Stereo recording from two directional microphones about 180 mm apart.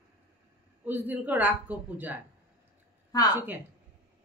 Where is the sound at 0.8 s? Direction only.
10° right (ahead or behind).